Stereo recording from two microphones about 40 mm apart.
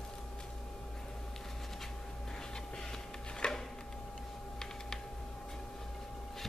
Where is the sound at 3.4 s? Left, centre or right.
Left.